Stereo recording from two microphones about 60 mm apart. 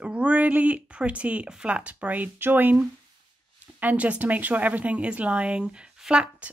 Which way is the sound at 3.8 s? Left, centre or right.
Right.